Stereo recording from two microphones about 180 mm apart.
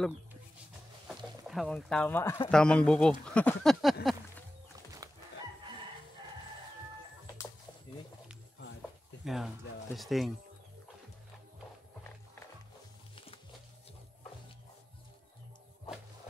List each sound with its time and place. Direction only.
1.5 s speech: centre (ahead or behind)
5.0 s chicken: 20° right (ahead or behind)
9.2 s speech: centre (ahead or behind)